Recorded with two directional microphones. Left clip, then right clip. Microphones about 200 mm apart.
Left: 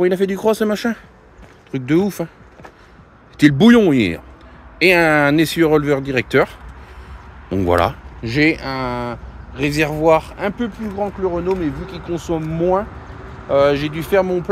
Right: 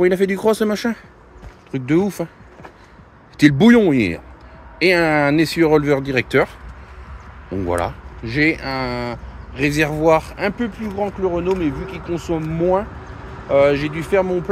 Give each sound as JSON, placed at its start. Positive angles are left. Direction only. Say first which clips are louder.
{"t": 0.0, "sound": "speech", "louder": "even", "side_deg": 0}
{"t": 7.5, "sound": "speech", "louder": "left 5 dB", "side_deg": 55}
{"t": 11.8, "sound": "speech", "louder": "even", "side_deg": 20}